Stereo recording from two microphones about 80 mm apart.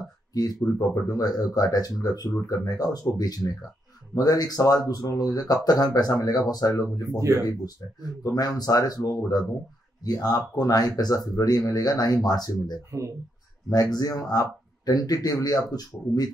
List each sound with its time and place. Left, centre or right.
0.3 s speech: left
7.2 s speech: right
7.4 s speech: left